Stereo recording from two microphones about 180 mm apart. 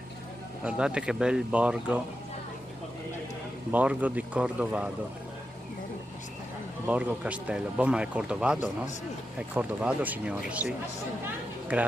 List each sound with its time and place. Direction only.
0.7 s speech: 5° right (ahead or behind)
3.7 s speech: 5° right (ahead or behind)
6.9 s speech: 10° right (ahead or behind)
11.7 s speech: 10° right (ahead or behind)